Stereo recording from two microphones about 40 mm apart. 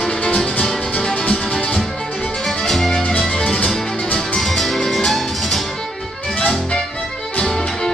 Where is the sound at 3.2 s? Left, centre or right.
Left.